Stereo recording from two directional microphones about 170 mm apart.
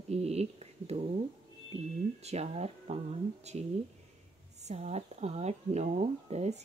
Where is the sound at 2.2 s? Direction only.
40° right (ahead or behind).